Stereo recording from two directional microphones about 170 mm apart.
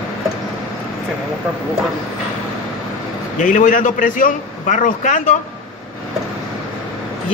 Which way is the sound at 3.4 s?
50° left (ahead or behind).